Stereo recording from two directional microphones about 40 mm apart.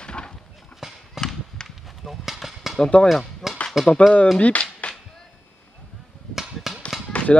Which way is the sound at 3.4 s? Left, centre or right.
Centre.